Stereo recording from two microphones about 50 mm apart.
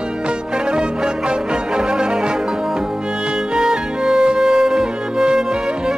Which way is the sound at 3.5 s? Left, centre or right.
Centre.